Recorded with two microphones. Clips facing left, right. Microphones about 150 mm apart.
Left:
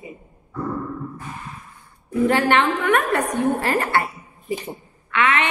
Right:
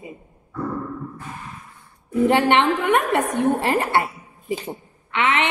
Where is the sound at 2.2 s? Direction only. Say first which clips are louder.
Right 1 dB; 20° right (ahead or behind).